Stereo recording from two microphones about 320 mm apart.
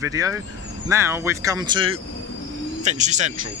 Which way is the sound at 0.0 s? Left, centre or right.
Centre.